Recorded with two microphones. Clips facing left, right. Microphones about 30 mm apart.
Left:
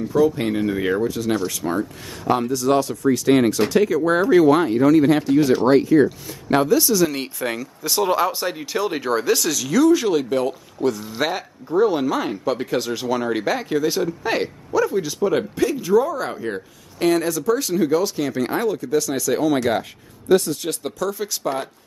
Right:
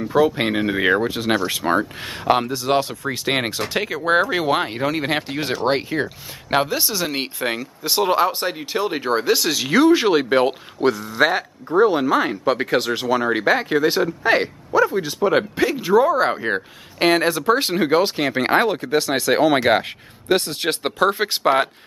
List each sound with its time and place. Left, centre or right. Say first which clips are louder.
0.0 s speech: right 1 dB; right
11.1 s speech: right 5 dB; centre
13.0 s speech: right 3 dB; centre
16.3 s speech: right 5 dB; right